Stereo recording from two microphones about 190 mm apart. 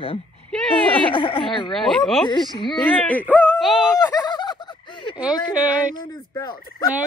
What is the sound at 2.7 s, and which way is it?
Speech, 10° left (ahead or behind).